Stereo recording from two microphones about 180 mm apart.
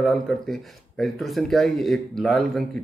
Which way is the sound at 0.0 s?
Centre (ahead or behind).